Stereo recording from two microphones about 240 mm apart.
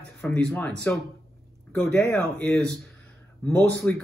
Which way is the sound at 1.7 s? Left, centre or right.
Centre.